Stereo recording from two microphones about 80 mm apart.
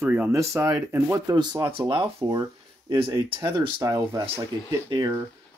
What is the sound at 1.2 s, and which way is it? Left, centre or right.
Speech, right.